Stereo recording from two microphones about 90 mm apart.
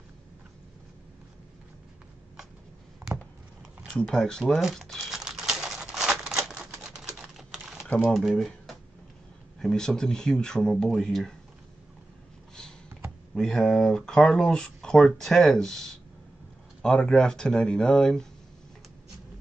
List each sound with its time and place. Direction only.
3.0 s a sound: 40° right (ahead or behind)
3.9 s speech: 5° left (ahead or behind)
4.6 s crumpling: centre (ahead or behind)
6.8 s typing: 5° right (ahead or behind)
8.0 s speech: centre (ahead or behind)
13.3 s speech: 5° left (ahead or behind)